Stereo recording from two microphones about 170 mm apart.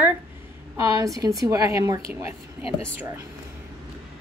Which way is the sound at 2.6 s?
35° left (ahead or behind).